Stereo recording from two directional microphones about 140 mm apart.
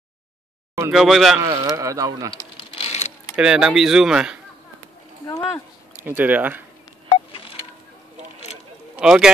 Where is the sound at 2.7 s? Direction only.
45° left (ahead or behind).